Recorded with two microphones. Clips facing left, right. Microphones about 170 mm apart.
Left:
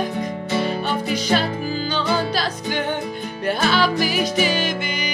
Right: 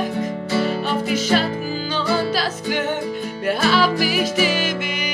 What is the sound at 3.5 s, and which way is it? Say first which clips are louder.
Music: right 1 dB; 5° right (ahead or behind).